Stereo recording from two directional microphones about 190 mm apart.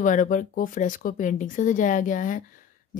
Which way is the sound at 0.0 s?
45° left (ahead or behind).